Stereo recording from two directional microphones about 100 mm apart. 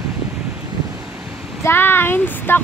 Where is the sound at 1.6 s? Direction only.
20° left (ahead or behind).